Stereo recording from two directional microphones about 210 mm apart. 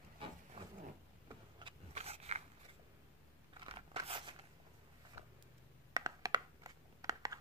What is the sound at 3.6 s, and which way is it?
Scissors, 25° right (ahead or behind).